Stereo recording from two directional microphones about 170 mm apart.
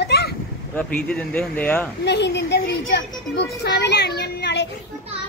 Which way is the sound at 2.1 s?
85° left.